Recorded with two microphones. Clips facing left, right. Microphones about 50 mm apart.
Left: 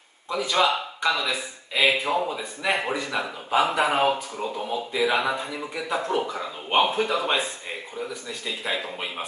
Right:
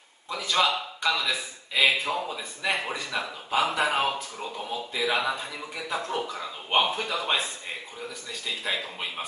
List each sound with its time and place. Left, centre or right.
0.3 s a man's voice: centre